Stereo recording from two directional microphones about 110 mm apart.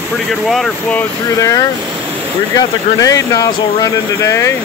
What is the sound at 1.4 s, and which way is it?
Speech, 30° left (ahead or behind).